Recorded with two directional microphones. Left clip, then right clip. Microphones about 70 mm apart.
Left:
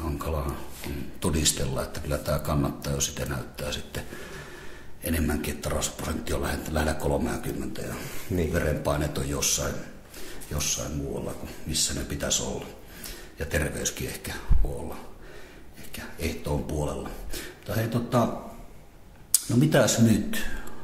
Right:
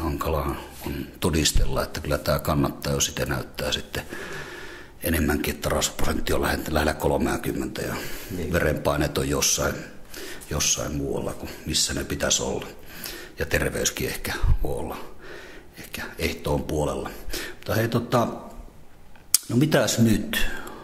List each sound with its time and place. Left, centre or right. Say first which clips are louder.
0.0 s a sound: right 6 dB; right
1.2 s speech: right 3 dB; right
15.9 s speech: right 5 dB; right
19.3 s speech: right 1 dB; right